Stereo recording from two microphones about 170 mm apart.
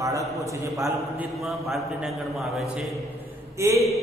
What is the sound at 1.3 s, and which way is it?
A man's voice, centre (ahead or behind).